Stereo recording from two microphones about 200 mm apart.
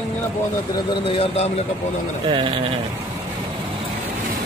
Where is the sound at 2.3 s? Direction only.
25° right (ahead or behind).